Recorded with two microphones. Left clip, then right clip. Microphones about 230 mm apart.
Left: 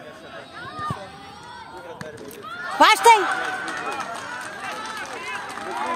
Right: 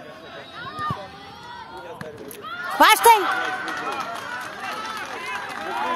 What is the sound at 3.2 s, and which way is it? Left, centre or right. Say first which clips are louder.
Run: even; right.